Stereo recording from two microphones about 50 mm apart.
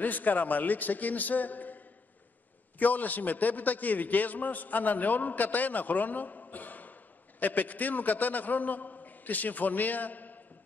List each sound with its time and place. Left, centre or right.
0.0 s a man's voice: left
2.8 s a man's voice: left